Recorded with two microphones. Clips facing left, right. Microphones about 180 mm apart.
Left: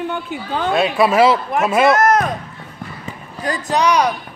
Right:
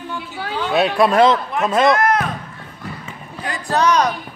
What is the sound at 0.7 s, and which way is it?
Speech, centre (ahead or behind).